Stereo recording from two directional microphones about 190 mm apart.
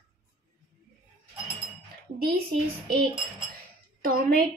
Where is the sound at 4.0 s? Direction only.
50° right (ahead or behind).